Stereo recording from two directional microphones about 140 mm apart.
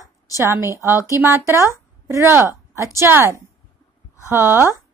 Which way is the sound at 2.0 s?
15° right (ahead or behind).